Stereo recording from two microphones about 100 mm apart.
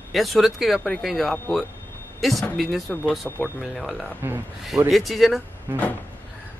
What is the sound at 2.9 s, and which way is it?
Speech, 20° left (ahead or behind).